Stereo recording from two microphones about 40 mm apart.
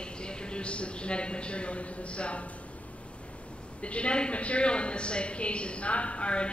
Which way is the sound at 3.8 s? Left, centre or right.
Left.